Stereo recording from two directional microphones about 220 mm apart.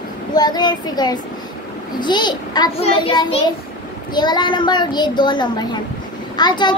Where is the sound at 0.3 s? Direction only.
20° left (ahead or behind).